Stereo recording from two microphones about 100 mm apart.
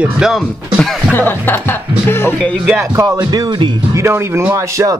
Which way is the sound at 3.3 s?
50° right (ahead or behind).